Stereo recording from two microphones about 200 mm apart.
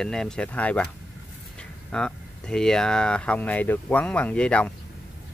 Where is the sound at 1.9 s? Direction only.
5° left (ahead or behind).